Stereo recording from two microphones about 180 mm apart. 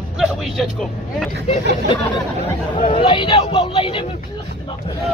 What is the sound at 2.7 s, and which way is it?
Speech, 40° left (ahead or behind).